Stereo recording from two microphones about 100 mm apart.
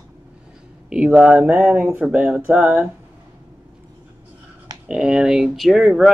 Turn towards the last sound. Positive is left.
turn(degrees=-5)  # may be behind; listen again after turning